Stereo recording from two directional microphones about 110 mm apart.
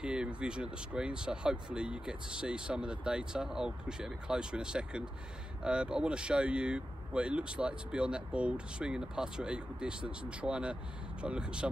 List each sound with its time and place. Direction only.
0.0 s speech: 10° right (ahead or behind)